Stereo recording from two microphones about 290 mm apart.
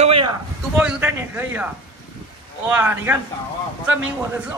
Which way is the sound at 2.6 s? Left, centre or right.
Centre.